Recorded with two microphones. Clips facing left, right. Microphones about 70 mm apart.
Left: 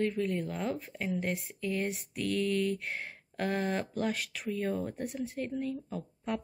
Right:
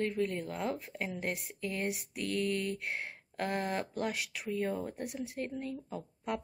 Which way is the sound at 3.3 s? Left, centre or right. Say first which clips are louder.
Left 2 dB; centre.